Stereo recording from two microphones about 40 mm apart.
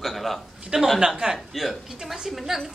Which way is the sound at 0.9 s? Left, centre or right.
Centre.